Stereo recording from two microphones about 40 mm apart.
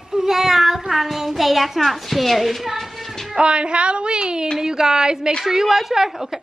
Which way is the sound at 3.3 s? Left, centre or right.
Right.